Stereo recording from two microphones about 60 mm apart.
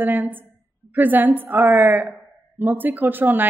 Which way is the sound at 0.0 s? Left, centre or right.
Right.